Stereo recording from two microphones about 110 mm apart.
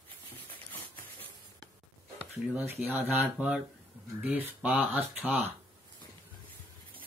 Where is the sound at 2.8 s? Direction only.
15° right (ahead or behind).